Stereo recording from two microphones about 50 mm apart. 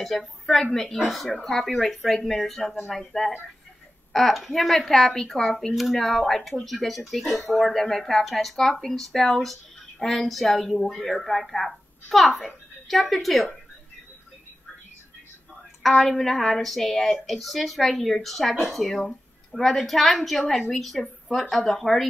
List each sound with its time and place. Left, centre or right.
0.0 s a woman's voice: centre
16.0 s a woman's voice: centre